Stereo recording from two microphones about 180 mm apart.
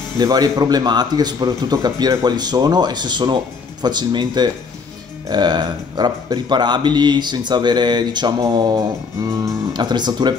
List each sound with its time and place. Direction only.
0.2 s speech: 20° right (ahead or behind)